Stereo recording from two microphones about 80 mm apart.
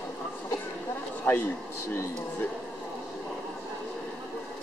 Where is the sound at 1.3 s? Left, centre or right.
Left.